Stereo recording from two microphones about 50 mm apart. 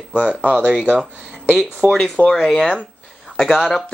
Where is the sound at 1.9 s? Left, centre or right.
Centre.